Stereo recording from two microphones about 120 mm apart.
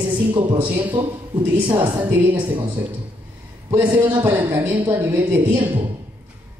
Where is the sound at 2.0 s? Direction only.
15° right (ahead or behind).